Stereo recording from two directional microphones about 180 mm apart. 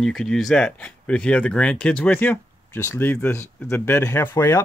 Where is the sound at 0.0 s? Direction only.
Centre (ahead or behind).